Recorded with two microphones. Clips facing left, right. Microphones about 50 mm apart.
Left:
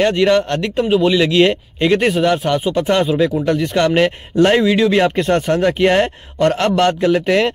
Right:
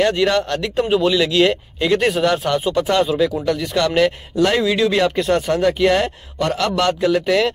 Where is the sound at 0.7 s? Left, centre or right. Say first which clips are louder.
Left 2 dB; centre.